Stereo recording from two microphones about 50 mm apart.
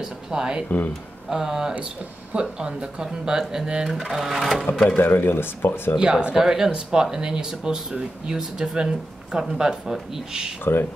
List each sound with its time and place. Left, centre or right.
0.0 s speech: centre
4.8 s speech: left
5.9 s speech: centre
10.6 s speech: left